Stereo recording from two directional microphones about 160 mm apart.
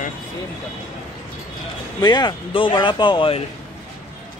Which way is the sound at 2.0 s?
25° left (ahead or behind).